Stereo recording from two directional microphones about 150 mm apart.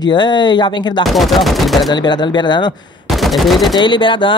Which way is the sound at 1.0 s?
Centre (ahead or behind).